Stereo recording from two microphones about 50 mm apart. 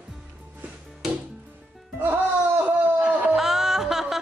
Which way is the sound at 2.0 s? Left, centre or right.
Right.